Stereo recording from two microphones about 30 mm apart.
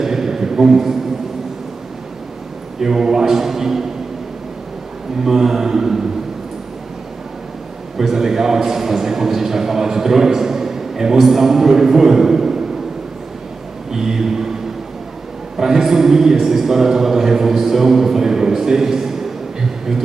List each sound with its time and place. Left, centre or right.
0.0 s a sound: centre
2.8 s a man's voice: centre
5.2 s a man's voice: centre
8.1 s a man's voice: centre
13.9 s a sound: centre
15.5 s a man's voice: centre